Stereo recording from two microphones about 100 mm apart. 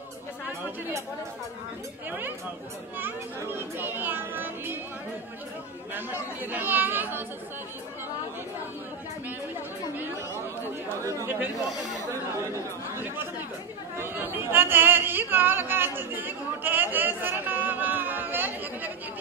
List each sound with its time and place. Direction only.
2.0 s a child's voice: 20° right (ahead or behind)
5.9 s a child's voice: 20° right (ahead or behind)
10.9 s a child's voice: 30° right (ahead or behind)
13.9 s speech: 25° right (ahead or behind)